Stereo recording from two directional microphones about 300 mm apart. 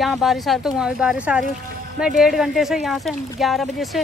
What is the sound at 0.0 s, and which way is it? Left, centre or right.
Speech, centre.